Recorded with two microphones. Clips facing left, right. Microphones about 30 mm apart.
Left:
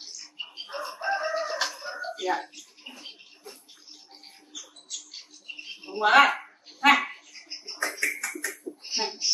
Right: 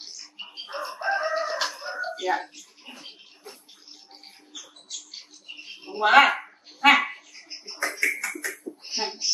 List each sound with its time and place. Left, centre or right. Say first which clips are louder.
0.0 s crowing: left 1 dB; centre
2.1 s speech: right 1 dB; centre
4.5 s bird: right 1 dB; right
5.6 s bird: right 1 dB; centre
7.7 s a sound: right 3 dB; centre
8.1 s beatboxing: right 3 dB; centre